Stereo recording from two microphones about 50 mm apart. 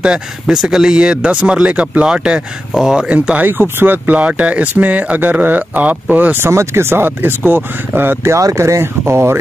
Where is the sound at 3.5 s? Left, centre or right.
Right.